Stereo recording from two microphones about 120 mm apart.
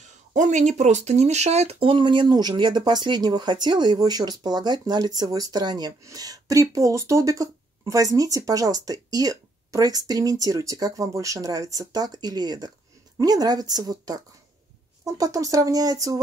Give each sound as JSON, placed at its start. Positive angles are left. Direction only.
{"t": 0.3, "sound": "speech", "side_deg": -85}